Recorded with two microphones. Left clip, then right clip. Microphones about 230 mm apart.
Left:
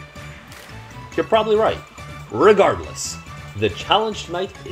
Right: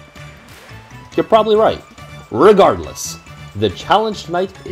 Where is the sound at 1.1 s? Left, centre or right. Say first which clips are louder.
Right 5 dB; right.